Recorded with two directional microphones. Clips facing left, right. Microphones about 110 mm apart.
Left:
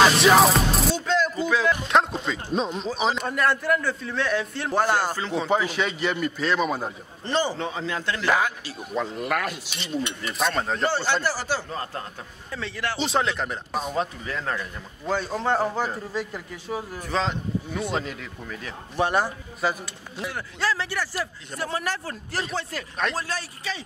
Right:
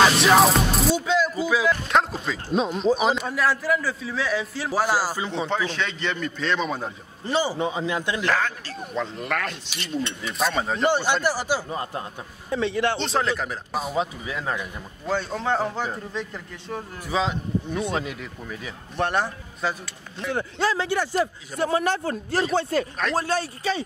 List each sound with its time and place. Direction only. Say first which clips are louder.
0.0 s music: even; centre (ahead or behind)
0.9 s a sound: right 1 dB; 5° right (ahead or behind)
1.7 s speech: even; centre (ahead or behind)
5.5 s speech: left 3 dB; 10° left (ahead or behind)
7.2 s a man's voice: right 2 dB; 10° right (ahead or behind)
8.3 s speech: left 4 dB; 10° left (ahead or behind); by 10.9 s 5° right (ahead or behind)
10.9 s a man's voice: right 3 dB; 15° right (ahead or behind)
13.0 s speech: even; centre (ahead or behind)
15.0 s speech: even; centre (ahead or behind)
17.1 s speech: right 2 dB; 5° right (ahead or behind)
20.3 s a man's voice: right 3 dB; 20° right (ahead or behind)